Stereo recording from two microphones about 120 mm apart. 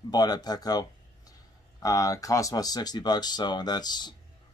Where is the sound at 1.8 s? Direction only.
30° left (ahead or behind).